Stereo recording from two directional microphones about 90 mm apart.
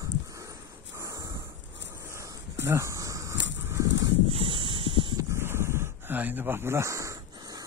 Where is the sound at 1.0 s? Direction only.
35° right (ahead or behind).